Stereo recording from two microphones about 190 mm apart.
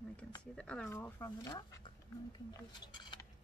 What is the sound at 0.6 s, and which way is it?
Speech, 5° left (ahead or behind).